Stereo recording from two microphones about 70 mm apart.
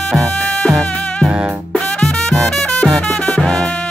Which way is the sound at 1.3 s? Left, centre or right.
Centre.